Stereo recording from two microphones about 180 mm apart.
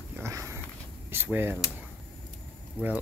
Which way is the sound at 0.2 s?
15° right (ahead or behind).